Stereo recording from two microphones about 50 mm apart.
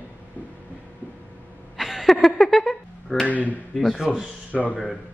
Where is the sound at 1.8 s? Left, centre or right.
Centre.